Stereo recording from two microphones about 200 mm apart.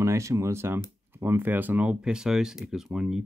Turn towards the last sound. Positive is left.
turn(degrees=-5)  # may be behind; listen again after turning